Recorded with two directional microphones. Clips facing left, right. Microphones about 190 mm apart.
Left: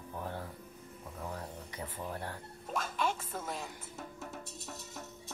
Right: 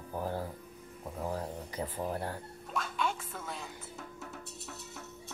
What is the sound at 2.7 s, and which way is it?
Speech, 45° left (ahead or behind).